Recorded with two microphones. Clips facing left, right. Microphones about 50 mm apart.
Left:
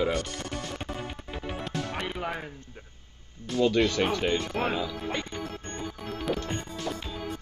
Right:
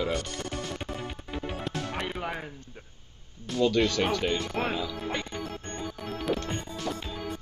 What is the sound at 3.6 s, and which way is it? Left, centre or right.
Speech, left.